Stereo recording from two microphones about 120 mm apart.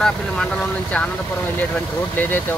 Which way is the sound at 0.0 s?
10° left (ahead or behind).